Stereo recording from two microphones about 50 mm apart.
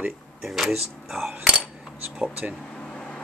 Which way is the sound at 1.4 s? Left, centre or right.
Centre.